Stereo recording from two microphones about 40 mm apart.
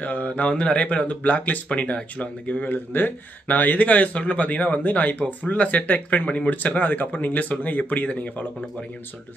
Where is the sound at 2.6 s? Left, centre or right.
Left.